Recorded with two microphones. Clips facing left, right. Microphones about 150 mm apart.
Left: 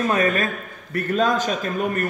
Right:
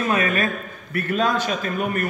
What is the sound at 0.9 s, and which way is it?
Speech, 40° left (ahead or behind).